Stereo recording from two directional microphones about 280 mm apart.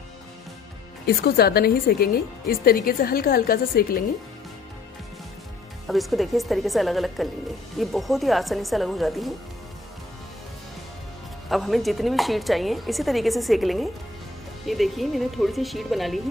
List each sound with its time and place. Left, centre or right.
1.0 s speech: left
5.9 s speech: centre
11.4 s speech: centre